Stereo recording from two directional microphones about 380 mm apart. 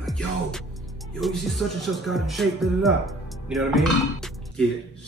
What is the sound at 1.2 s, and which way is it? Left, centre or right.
Speech, centre.